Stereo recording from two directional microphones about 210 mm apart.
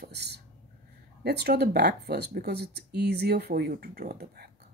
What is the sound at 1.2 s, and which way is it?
Speech, 50° right (ahead or behind).